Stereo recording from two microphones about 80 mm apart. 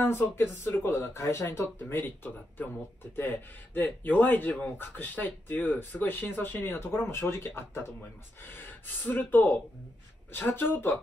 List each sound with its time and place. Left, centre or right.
0.0 s speech: left
1.4 s speech: left